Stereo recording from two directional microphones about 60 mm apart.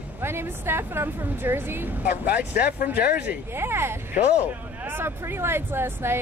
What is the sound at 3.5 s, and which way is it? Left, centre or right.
Speech, right.